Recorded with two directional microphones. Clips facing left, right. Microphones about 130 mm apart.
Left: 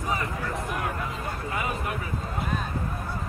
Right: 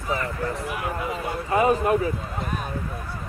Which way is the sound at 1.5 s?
40° right (ahead or behind).